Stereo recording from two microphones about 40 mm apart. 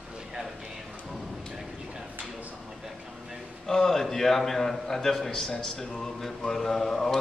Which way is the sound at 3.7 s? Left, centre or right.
Centre.